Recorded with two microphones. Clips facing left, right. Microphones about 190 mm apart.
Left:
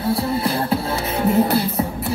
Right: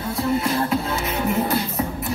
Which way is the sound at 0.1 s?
35° left (ahead or behind).